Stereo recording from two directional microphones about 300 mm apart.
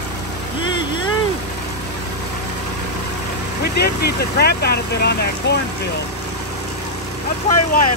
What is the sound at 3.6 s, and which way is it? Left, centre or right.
Speech, left.